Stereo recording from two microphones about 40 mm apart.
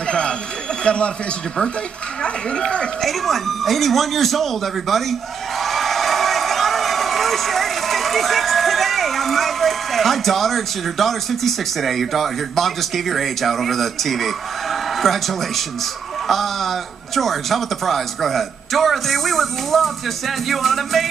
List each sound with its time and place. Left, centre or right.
0.8 s speech: left
2.2 s speech: left
3.0 s a man's voice: centre